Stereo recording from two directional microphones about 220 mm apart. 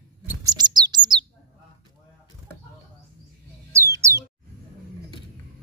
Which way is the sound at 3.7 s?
15° right (ahead or behind).